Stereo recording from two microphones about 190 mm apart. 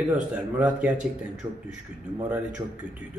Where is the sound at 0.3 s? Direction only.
5° right (ahead or behind).